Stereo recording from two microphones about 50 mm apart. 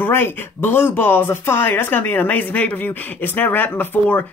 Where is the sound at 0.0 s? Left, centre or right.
Left.